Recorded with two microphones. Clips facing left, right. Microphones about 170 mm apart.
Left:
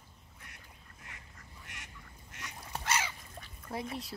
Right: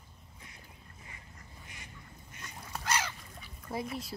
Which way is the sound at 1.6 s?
80° left.